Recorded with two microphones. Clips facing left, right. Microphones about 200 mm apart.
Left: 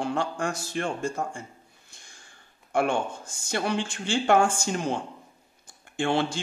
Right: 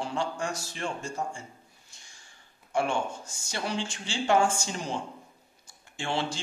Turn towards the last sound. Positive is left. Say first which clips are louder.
# left 6 dB
turn(degrees=55)  # may be behind; listen again after turning